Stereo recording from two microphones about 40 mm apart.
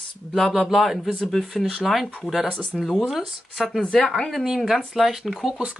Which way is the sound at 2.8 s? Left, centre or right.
Centre.